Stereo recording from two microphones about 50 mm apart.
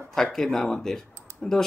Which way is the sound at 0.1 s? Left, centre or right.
Centre.